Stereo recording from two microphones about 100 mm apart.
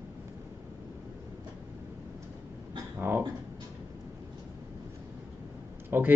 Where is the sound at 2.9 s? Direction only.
20° right (ahead or behind).